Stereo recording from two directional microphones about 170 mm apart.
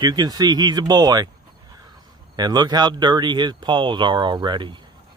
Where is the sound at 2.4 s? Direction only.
25° right (ahead or behind).